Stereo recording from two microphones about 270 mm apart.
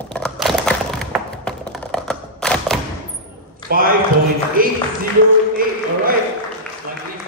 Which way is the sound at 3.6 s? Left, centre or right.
Right.